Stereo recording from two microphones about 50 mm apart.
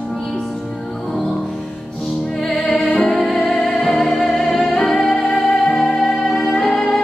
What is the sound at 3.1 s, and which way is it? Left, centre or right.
Music, centre.